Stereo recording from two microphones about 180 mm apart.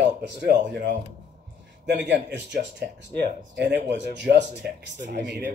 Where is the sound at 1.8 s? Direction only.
75° right (ahead or behind).